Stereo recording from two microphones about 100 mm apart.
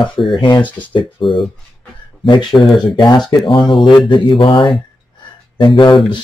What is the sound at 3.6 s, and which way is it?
Speech, centre (ahead or behind).